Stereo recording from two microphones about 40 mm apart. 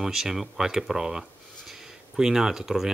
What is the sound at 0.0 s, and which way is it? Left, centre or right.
Speech, centre.